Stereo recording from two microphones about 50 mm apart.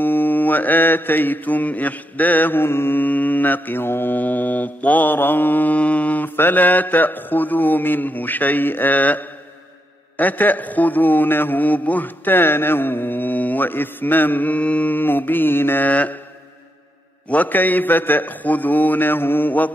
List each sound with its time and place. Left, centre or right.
0.0 s mantra: left
3.0 s mantra: left
5.8 s mantra: left
15.9 s mantra: left
17.3 s mantra: left